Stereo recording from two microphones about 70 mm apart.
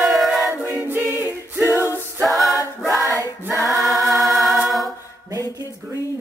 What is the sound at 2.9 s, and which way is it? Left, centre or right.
Choir, right.